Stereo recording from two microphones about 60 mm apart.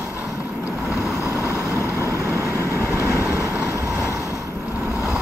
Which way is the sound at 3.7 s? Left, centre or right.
Right.